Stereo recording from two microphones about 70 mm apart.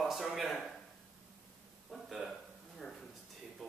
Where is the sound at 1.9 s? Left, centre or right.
Centre.